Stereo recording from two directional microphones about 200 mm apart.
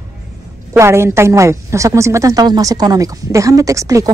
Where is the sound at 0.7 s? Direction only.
15° right (ahead or behind).